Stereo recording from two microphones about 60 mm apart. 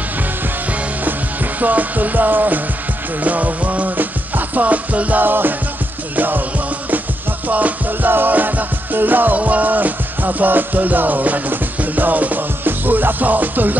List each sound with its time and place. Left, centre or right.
1.0 s music: right
7.4 s music: right